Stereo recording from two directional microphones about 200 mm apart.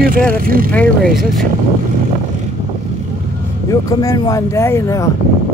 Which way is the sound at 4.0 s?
15° left (ahead or behind).